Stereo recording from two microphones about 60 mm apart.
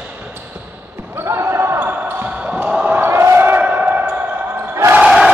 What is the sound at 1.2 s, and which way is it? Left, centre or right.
Basketball bounce, right.